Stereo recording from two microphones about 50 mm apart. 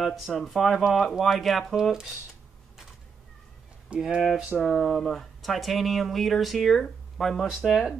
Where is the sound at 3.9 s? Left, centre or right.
Right.